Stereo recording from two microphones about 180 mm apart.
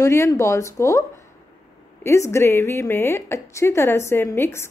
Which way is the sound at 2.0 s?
15° left (ahead or behind).